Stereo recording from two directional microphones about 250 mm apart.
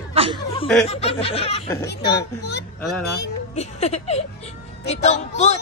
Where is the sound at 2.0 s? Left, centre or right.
Left.